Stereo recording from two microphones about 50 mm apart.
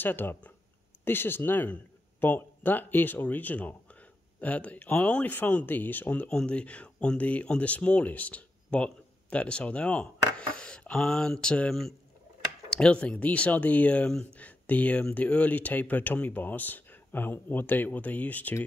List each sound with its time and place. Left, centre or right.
0.0 s speech: left; by 11.5 s centre
12.6 s speech: centre; by 18.6 s left